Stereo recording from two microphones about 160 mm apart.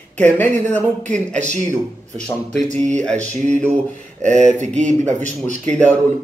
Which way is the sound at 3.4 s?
50° right (ahead or behind).